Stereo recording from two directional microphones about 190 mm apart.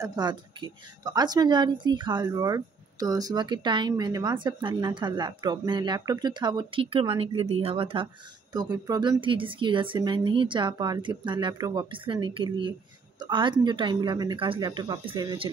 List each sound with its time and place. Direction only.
0.0 s speech: 20° right (ahead or behind)